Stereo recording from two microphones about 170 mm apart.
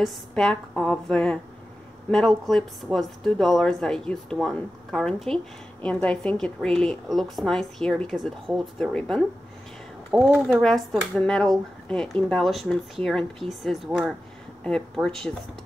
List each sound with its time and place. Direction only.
0.0 s speech: 5° left (ahead or behind)